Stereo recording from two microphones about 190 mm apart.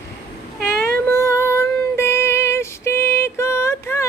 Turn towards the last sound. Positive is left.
turn(degrees=15)  # may be behind; listen again after turning